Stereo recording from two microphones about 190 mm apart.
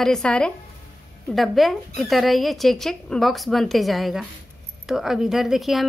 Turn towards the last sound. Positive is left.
turn(degrees=0)  # may be behind; listen again after turning